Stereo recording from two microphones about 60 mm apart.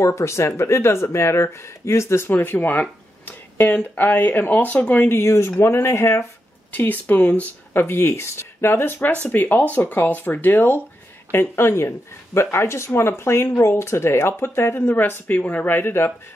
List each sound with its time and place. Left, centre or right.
0.0 s speech: left
2.3 s speech: left
5.0 s speech: left
6.7 s speech: left
7.7 s speech: left
11.3 s speech: left